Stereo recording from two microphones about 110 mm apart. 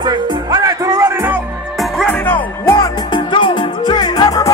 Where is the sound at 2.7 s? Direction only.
40° left (ahead or behind).